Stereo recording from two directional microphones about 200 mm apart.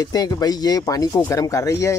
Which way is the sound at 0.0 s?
20° left (ahead or behind).